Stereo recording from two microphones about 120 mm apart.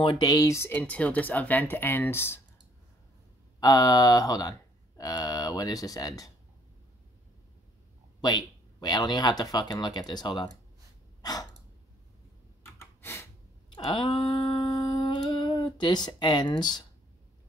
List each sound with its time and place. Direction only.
0.0 s speech: 40° left (ahead or behind)
0.3 s speech: 25° left (ahead or behind)
3.5 s speech: 30° left (ahead or behind)
8.2 s speech: 35° left (ahead or behind)
12.7 s a sound: 20° left (ahead or behind)
13.7 s humming: 40° left (ahead or behind)